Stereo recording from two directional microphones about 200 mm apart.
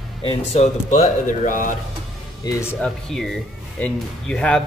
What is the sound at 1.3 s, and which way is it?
Speech, 40° left (ahead or behind).